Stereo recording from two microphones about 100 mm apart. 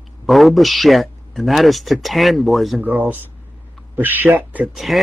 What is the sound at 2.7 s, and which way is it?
Speech, 15° right (ahead or behind).